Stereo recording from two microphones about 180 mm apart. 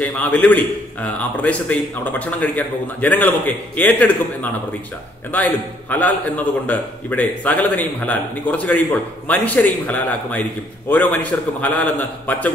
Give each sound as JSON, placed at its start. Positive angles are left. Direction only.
{"t": 0.0, "sound": "a man's voice", "side_deg": 10}